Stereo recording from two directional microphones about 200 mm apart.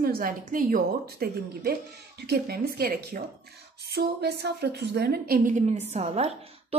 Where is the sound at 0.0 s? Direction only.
45° right (ahead or behind).